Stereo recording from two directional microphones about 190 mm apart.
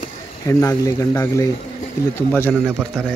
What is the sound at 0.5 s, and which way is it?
Speech, 15° left (ahead or behind).